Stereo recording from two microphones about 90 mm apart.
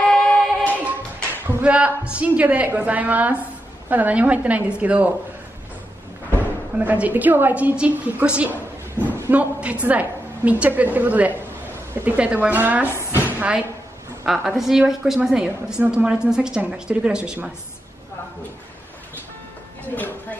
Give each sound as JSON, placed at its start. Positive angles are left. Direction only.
{"t": 0.1, "sound": "music", "side_deg": 10}
{"t": 0.8, "sound": "a woman's voice", "side_deg": -15}
{"t": 6.8, "sound": "a woman's voice", "side_deg": -20}
{"t": 12.8, "sound": "speech", "side_deg": 30}
{"t": 14.2, "sound": "a woman's voice", "side_deg": -5}
{"t": 20.0, "sound": "a sound", "side_deg": 20}